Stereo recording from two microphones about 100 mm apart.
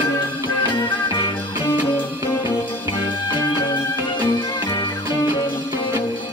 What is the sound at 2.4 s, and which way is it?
Music, 55° left (ahead or behind).